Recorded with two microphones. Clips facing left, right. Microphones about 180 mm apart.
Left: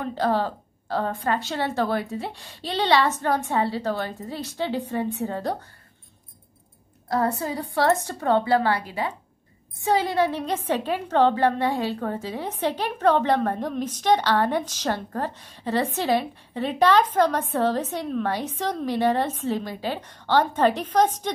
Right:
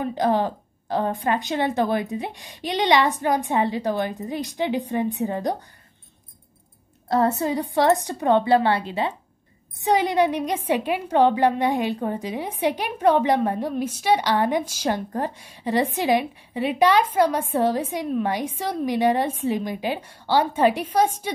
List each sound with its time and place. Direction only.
0.0 s a woman's voice: 15° right (ahead or behind)
7.1 s a woman's voice: 25° right (ahead or behind); by 21.3 s 10° right (ahead or behind)